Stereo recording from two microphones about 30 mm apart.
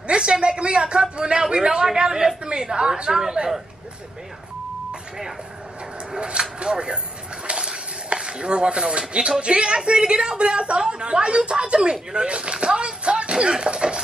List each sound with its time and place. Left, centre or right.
0.0 s a woman's voice: right
1.9 s a sound: right
2.6 s a woman's voice: right
6.1 s speech: right
7.4 s a sound: right
9.4 s speech: right